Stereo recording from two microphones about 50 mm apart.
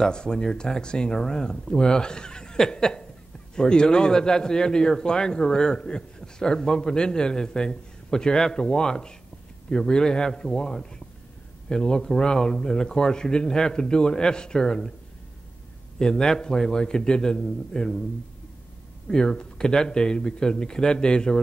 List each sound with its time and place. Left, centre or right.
0.0 s speech: centre
16.0 s speech: centre
19.0 s speech: centre